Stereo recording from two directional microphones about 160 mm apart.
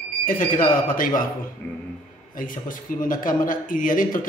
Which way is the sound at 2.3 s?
55° left (ahead or behind).